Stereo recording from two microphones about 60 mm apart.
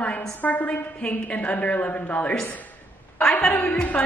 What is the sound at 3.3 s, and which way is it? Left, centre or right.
Speech, left.